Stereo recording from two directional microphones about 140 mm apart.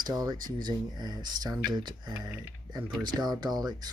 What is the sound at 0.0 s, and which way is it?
Speech, 30° right (ahead or behind).